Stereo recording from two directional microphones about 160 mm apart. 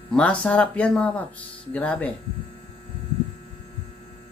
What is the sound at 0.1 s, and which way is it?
Speech, 5° left (ahead or behind).